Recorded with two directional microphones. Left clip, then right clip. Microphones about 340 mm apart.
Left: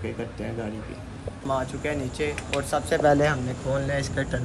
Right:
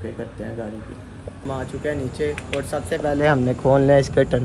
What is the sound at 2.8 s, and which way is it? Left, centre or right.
Speech, left.